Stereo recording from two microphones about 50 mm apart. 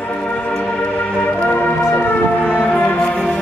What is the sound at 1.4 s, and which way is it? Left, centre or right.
Music, left.